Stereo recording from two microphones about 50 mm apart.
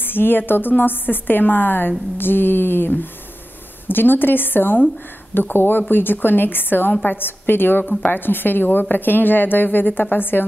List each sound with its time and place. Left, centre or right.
0.0 s a woman's voice: left